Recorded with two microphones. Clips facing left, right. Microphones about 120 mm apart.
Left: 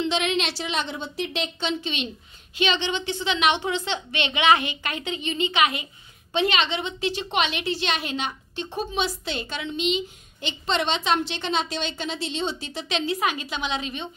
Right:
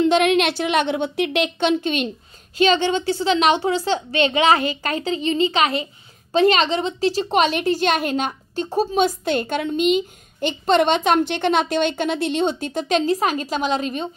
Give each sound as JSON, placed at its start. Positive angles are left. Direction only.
{"t": 0.0, "sound": "a woman's voice", "side_deg": -50}